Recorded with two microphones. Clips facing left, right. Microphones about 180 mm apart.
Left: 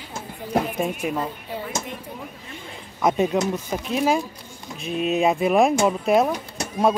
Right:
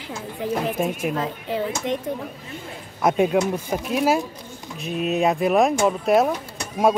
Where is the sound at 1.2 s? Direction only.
90° right.